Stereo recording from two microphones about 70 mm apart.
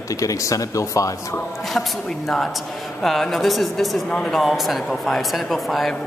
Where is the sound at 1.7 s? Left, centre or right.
Centre.